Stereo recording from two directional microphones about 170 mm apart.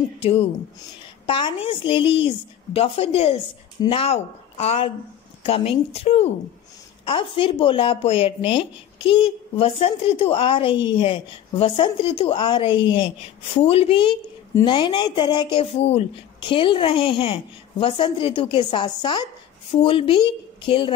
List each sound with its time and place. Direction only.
0.2 s a child's voice: 35° left (ahead or behind)
7.3 s a child's voice: 30° left (ahead or behind)
15.8 s a child's voice: 35° left (ahead or behind)